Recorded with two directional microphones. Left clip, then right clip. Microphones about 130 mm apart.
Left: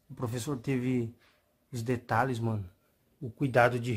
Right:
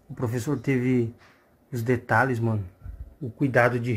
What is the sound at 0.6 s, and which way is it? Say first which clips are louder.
Speech: right 8 dB; 5° left (ahead or behind).